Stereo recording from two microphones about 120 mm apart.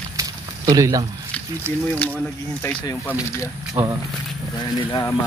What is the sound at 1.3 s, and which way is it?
Speech, 10° left (ahead or behind).